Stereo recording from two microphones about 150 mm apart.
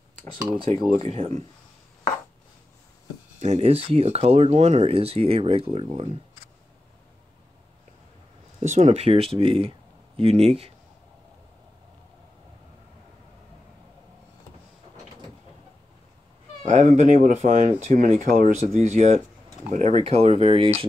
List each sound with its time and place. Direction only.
1.0 s speech: 45° right (ahead or behind)
3.3 s speech: 45° right (ahead or behind)
8.5 s speech: 55° right (ahead or behind)
16.6 s speech: 50° right (ahead or behind)